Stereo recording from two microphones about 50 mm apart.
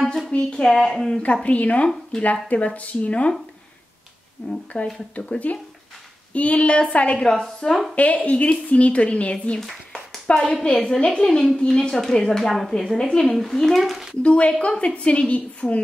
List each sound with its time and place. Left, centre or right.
0.0 s a sound: centre
0.3 s a woman's voice: left
0.7 s a woman's voice: centre
1.2 s a woman's voice: left
4.4 s a woman's voice: left
7.2 s a woman's voice: centre
7.9 s a woman's voice: left
9.6 s a sound: centre
10.5 s a woman's voice: left
12.3 s a woman's voice: centre
14.2 s a woman's voice: left